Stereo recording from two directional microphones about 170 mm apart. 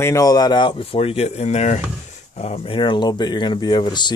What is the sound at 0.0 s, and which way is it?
Speech, 20° left (ahead or behind).